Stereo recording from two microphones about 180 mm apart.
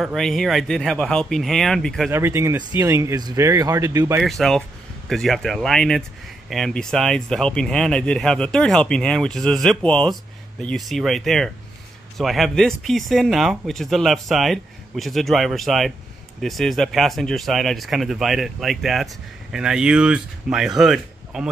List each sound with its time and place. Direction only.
0.0 s speech: centre (ahead or behind)
2.0 s speech: 15° right (ahead or behind)
4.2 s speech: centre (ahead or behind)